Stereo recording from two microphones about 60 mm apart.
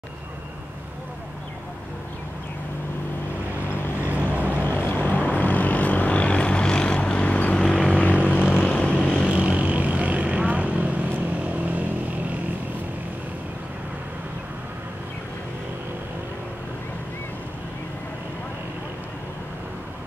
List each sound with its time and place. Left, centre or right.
4.0 s vehicle: right
4.6 s vehicle: left
7.5 s vehicle: centre
9.3 s vehicle: right